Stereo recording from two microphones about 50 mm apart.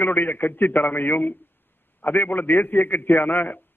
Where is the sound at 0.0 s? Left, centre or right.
Left.